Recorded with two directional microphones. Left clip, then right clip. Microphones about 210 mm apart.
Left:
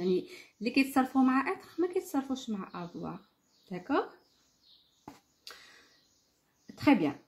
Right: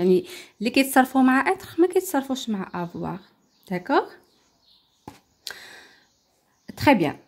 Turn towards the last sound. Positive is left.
turn(degrees=-50)  # may be behind; listen again after turning